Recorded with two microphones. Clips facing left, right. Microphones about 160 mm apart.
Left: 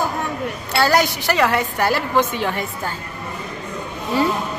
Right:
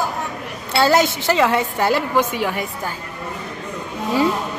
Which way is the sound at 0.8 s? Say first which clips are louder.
Right 2 dB; 20° right (ahead or behind).